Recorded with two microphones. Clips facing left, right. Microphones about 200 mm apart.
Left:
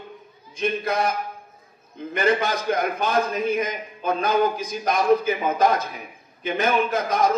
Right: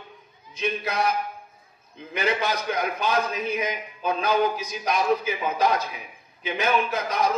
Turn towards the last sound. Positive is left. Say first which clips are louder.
# left 3 dB
turn(degrees=50)  # may be behind; listen again after turning